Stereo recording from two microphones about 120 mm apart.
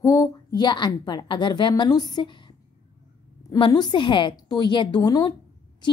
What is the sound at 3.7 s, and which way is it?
A woman's voice, 35° left (ahead or behind).